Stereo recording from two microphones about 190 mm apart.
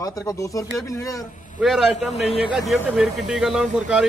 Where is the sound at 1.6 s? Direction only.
Centre (ahead or behind).